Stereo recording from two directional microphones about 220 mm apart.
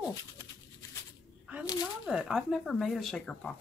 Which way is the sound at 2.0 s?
5° right (ahead or behind).